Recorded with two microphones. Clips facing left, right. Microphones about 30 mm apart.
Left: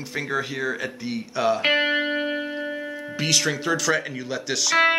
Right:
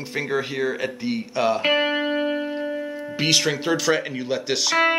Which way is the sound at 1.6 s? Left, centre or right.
Centre.